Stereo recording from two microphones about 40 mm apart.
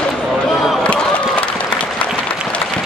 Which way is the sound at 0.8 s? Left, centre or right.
Left.